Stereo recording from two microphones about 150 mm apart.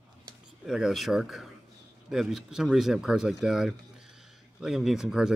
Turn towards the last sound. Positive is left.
turn(degrees=-5)  # may be behind; listen again after turning